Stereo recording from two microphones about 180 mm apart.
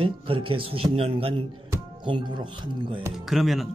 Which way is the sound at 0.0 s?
30° right (ahead or behind).